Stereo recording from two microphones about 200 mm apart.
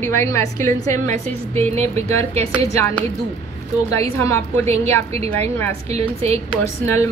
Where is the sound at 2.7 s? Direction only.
15° left (ahead or behind).